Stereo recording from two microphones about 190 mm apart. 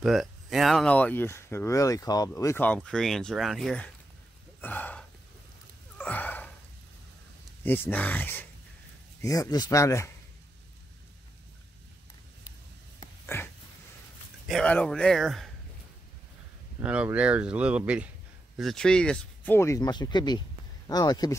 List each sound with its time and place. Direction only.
0.0 s speech: centre (ahead or behind)
4.6 s a sound: 10° left (ahead or behind)
7.6 s speech: 10° left (ahead or behind)
13.3 s a sound: 15° left (ahead or behind)
14.5 s speech: 5° left (ahead or behind)
16.8 s speech: 5° right (ahead or behind); by 21.4 s 20° left (ahead or behind)